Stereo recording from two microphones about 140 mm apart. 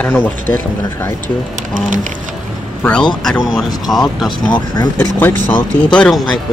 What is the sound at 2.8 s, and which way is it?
Speech, 10° left (ahead or behind).